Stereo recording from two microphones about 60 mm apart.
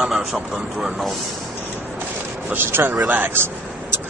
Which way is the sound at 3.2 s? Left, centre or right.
Right.